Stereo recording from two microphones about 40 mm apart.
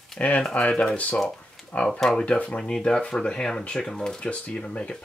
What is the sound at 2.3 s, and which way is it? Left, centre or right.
Speech, left.